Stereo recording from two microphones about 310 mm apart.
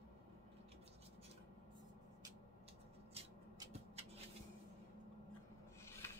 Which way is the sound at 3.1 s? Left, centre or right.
Centre.